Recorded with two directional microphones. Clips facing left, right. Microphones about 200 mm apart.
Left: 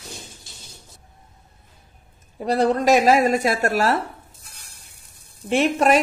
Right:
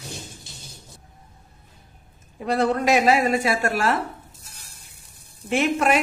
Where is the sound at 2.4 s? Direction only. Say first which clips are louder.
Left 2 dB; 35° left (ahead or behind).